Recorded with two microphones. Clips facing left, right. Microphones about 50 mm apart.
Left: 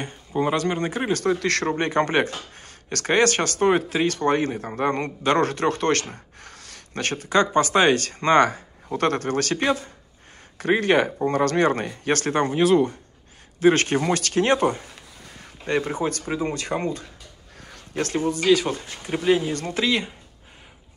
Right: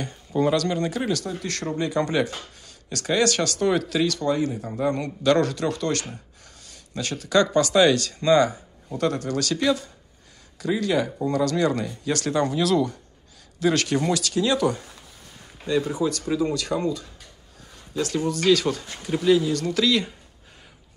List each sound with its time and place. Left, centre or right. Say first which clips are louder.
0.0 s speech: right 1 dB; left
1.2 s a man's voice: left 8 dB; left
4.3 s a man's voice: left 2 dB; left
5.2 s a man's voice: even; left
7.2 s a man's voice: even; left
14.2 s a man's voice: left 2 dB; left
17.6 s a sound: even; left
18.2 s speech: left 1 dB; left
19.0 s speech: right 1 dB; left